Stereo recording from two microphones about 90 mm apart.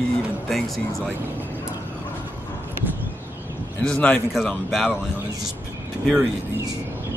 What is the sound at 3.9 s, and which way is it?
Speech, 15° left (ahead or behind).